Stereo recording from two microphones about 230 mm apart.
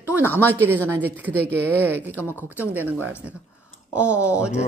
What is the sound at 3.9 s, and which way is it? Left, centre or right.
Speech, centre.